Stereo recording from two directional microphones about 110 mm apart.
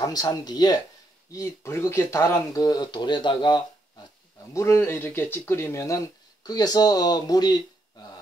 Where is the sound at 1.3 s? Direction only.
25° left (ahead or behind); by 3.6 s 45° left (ahead or behind).